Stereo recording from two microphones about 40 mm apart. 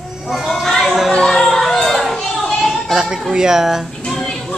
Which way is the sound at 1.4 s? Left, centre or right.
Centre.